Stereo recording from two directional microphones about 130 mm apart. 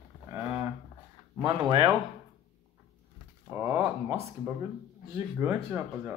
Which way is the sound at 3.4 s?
20° right (ahead or behind).